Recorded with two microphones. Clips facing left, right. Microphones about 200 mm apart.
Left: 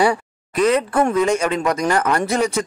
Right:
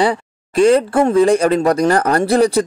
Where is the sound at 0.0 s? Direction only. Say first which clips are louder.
Right 1 dB; 25° right (ahead or behind).